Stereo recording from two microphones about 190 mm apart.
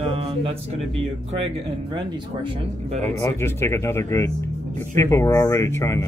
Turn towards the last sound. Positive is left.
turn(degrees=15)  # may be behind; listen again after turning